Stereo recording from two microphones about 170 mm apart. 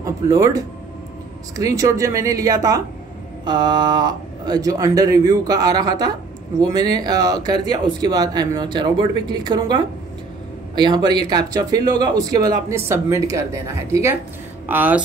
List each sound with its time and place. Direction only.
0.0 s a woman's voice: 20° right (ahead or behind)